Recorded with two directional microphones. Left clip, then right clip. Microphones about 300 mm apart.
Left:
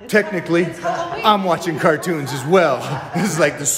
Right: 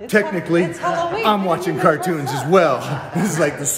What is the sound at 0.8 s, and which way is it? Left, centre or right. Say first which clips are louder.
Speech: right 2 dB; right.